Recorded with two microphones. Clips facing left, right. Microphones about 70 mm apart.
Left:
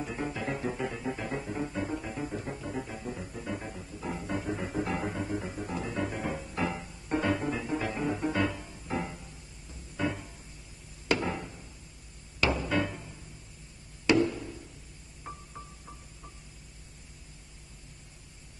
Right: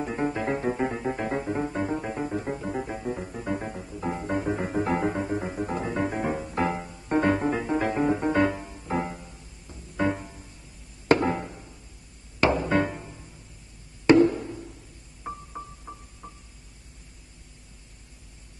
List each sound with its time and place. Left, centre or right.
0.0 s music: right
8.6 s music: right
9.9 s music: right
11.1 s chop: right
12.4 s music: right
14.0 s wood block: right
15.2 s music: right